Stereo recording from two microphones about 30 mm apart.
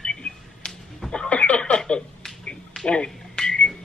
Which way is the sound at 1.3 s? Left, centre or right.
Left.